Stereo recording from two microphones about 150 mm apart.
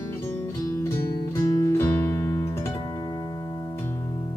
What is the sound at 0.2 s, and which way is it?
Music, 15° left (ahead or behind).